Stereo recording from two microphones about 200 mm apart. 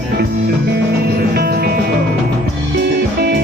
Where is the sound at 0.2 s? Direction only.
55° right (ahead or behind).